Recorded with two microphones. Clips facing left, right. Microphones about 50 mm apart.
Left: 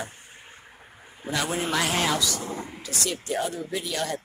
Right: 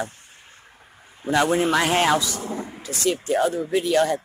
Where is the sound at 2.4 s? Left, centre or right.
Centre.